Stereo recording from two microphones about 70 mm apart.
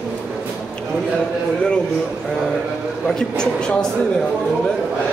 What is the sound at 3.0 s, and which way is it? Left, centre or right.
Speech, centre.